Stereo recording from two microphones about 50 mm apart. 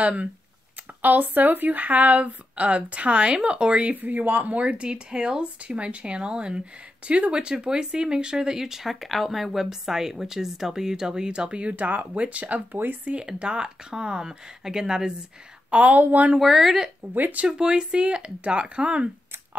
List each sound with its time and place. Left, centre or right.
0.0 s speech: right
1.0 s speech: right
11.7 s speech: right; by 15.1 s centre
15.7 s speech: right
16.3 s speech: centre
17.0 s speech: right
17.5 s speech: centre